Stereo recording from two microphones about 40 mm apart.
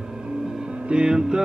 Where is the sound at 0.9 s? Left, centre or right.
Centre.